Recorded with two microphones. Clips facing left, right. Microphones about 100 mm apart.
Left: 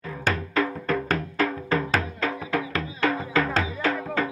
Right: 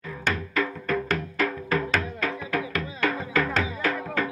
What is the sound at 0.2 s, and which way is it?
Music, 35° left (ahead or behind).